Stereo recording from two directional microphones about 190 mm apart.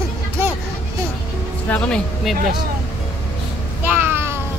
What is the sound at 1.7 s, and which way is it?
Speech, 5° left (ahead or behind).